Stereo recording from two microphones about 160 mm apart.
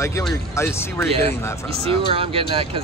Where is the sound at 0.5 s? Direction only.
15° left (ahead or behind).